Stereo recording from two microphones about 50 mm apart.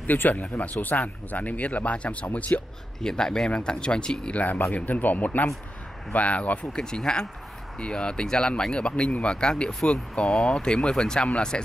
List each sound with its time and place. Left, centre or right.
0.0 s speech: left
3.0 s speech: centre
4.4 s speech: left
6.7 s speech: centre